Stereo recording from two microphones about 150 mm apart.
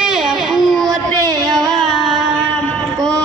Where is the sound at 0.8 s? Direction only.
25° right (ahead or behind).